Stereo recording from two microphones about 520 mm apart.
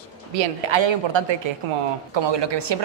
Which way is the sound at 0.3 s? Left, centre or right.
Right.